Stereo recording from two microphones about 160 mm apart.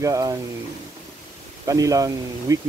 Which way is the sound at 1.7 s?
20° right (ahead or behind).